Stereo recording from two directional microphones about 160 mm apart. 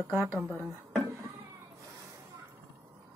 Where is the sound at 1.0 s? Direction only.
15° right (ahead or behind).